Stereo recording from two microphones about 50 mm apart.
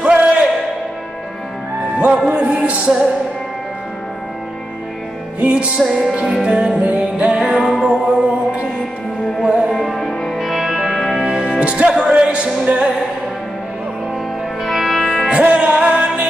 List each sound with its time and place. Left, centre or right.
0.0 s music: right
2.2 s speech: right
5.4 s speech: right
5.9 s music: centre
6.4 s speech: centre
6.8 s speech: right
7.5 s music: centre
7.8 s music: centre
9.7 s music: centre; by 12.9 s right
14.6 s music: centre
15.2 s music: centre